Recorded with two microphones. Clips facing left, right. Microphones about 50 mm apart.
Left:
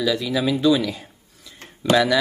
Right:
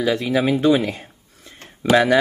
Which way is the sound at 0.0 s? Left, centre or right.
Right.